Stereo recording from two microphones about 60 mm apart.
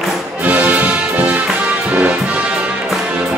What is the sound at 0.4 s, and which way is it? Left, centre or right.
Music, right.